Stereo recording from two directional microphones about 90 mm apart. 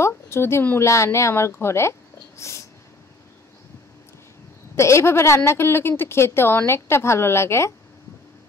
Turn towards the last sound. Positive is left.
turn(degrees=30)  # may be behind; listen again after turning